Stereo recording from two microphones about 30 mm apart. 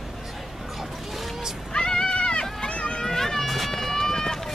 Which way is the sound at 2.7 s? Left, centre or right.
Left.